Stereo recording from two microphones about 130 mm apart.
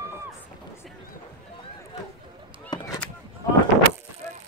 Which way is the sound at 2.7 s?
30° left (ahead or behind).